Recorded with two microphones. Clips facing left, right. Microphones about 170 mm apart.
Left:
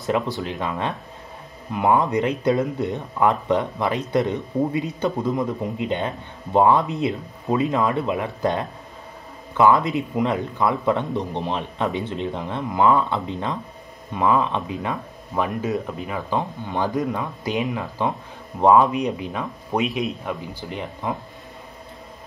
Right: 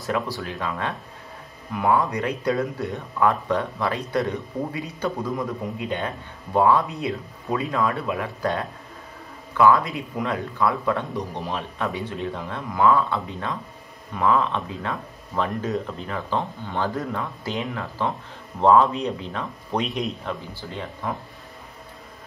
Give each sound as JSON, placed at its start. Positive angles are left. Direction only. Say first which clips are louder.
{"t": 0.0, "sound": "speech", "louder": "left 3 dB", "side_deg": 20}
{"t": 20.7, "sound": "speech", "louder": "left 2 dB", "side_deg": 20}